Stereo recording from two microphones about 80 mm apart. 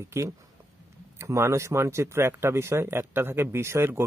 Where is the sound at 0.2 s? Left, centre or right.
Right.